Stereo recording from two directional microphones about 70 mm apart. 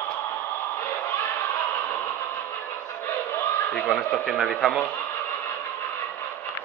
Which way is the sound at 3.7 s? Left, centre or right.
Centre.